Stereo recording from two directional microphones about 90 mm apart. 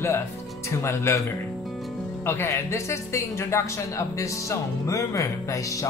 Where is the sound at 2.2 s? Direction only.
30° left (ahead or behind).